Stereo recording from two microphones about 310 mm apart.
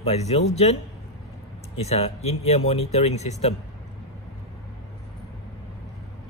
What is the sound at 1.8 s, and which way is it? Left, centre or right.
Speech, centre.